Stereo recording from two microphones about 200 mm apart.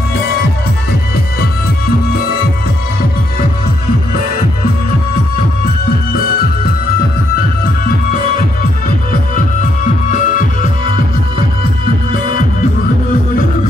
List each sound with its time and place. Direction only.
10.1 s music: 40° left (ahead or behind)
12.1 s music: 40° left (ahead or behind)